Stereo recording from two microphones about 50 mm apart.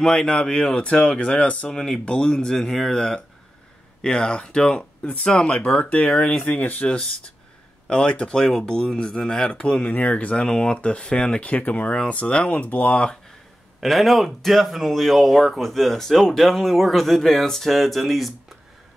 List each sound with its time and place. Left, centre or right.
0.0 s speech: centre
1.7 s speech: centre
5.0 s speech: left
6.5 s speech: left
13.7 s speech: centre